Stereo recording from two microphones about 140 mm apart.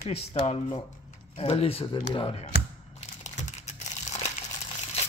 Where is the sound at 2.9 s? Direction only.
55° left (ahead or behind).